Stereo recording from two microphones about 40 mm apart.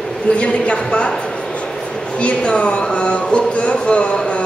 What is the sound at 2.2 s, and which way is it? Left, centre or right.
Speech, left.